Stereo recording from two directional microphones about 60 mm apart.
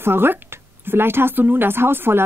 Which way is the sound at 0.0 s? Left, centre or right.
Right.